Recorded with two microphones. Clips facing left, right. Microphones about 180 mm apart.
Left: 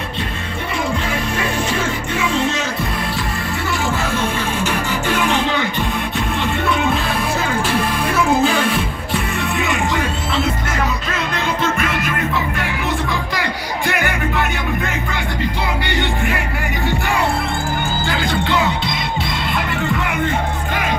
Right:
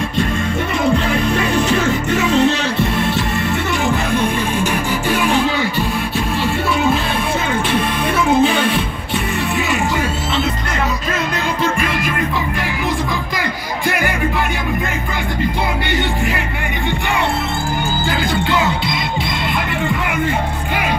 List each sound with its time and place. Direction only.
5.1 s music: 10° right (ahead or behind)
8.3 s music: centre (ahead or behind)